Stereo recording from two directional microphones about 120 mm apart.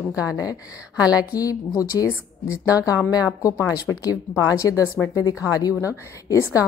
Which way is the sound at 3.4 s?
30° left (ahead or behind).